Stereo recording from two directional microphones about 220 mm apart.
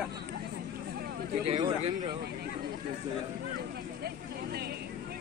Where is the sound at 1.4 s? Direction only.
25° right (ahead or behind).